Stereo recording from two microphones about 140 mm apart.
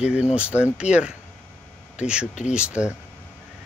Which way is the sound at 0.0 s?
10° right (ahead or behind).